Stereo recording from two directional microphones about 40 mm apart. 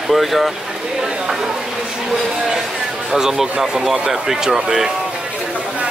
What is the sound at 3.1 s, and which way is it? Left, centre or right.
Speech, centre.